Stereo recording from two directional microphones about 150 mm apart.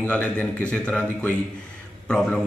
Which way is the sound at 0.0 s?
10° left (ahead or behind).